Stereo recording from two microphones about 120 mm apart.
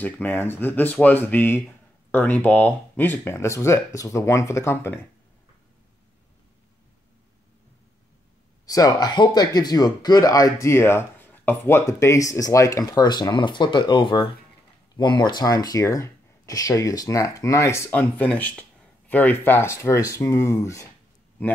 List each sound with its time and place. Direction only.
0.0 s speech: 15° left (ahead or behind)
8.6 s speech: 30° left (ahead or behind)